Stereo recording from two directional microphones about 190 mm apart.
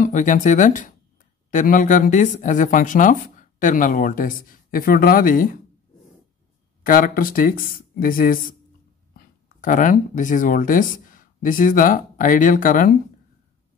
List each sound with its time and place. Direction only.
0.0 s speech: 40° left (ahead or behind)
6.8 s speech: 45° left (ahead or behind)